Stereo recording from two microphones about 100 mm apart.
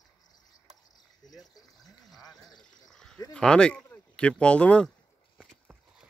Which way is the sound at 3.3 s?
10° left (ahead or behind).